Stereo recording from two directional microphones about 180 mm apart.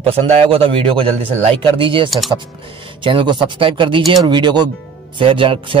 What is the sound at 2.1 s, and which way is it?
Speech, centre (ahead or behind).